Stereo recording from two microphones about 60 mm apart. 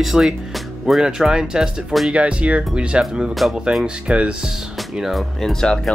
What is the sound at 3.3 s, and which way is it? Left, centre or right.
Speech, centre.